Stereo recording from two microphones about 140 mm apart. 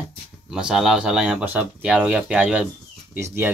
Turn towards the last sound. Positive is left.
turn(degrees=-20)  # may be behind; listen again after turning